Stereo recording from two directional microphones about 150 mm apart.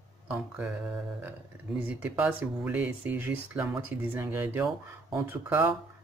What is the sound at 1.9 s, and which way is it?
Speech, 10° right (ahead or behind).